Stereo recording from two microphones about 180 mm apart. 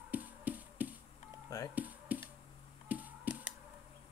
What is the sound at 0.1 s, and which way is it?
Music, 10° right (ahead or behind).